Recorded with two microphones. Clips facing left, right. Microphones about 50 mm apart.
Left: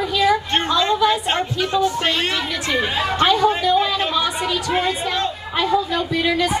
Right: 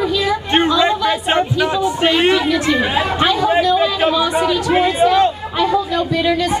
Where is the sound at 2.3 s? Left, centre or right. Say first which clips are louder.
Right 7 dB; centre.